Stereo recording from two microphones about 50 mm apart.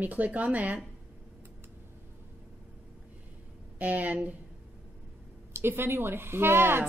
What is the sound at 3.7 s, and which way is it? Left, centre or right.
Speech, right.